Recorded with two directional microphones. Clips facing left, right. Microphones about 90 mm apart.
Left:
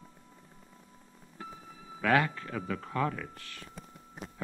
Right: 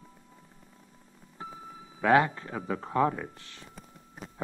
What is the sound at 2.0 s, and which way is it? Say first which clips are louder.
Speech: right 4 dB; 25° right (ahead or behind).